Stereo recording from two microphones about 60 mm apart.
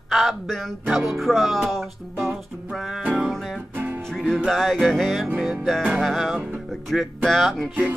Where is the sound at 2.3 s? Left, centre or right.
Centre.